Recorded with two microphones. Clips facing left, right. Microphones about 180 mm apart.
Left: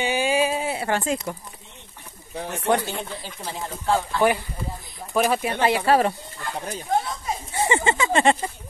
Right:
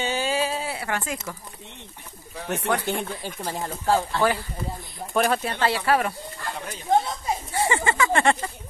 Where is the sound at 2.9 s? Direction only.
50° right (ahead or behind).